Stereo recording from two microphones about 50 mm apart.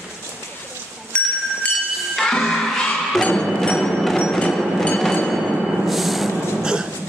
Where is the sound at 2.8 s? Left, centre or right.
Centre.